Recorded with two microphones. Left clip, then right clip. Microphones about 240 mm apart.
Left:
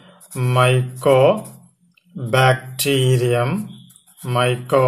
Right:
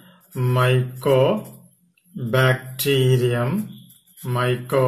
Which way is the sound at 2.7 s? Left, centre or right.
Left.